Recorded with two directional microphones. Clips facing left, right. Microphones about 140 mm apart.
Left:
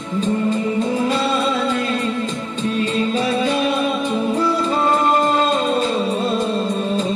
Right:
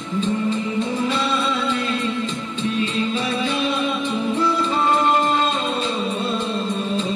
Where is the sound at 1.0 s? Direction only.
40° left (ahead or behind).